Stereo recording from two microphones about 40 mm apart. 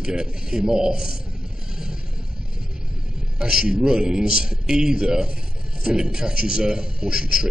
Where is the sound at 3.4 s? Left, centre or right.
Centre.